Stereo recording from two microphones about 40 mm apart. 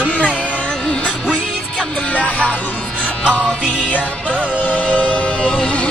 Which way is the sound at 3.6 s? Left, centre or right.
Right.